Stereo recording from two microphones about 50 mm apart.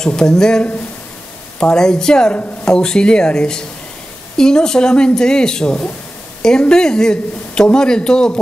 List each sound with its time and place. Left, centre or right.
0.0 s a man's voice: centre